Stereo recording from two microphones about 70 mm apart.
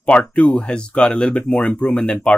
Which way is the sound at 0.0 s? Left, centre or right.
Centre.